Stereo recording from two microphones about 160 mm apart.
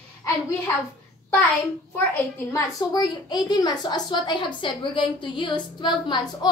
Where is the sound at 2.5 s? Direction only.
25° left (ahead or behind).